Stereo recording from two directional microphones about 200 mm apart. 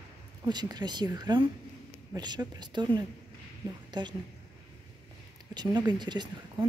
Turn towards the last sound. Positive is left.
turn(degrees=-20)  # may be behind; listen again after turning